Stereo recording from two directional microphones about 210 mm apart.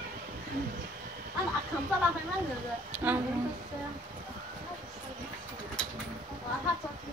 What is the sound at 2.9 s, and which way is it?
Speech, 10° right (ahead or behind).